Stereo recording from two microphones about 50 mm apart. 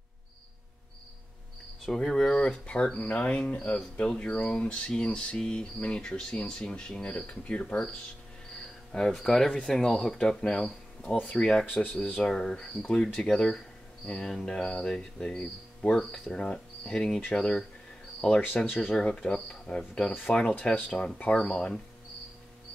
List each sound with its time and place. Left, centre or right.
1.9 s speech: centre
2.3 s cricket: left
8.9 s speech: centre
11.7 s speech: left
12.2 s speech: centre
18.8 s speech: centre
20.6 s cricket: centre